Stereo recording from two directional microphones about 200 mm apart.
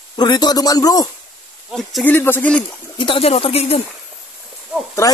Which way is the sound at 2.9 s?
25° left (ahead or behind).